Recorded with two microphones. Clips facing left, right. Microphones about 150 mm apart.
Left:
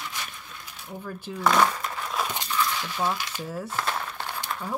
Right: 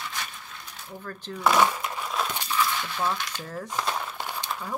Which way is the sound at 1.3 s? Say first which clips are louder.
Even; 5° right (ahead or behind).